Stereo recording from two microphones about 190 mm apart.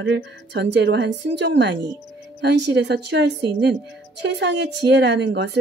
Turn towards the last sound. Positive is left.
turn(degrees=-65)  # may be behind; listen again after turning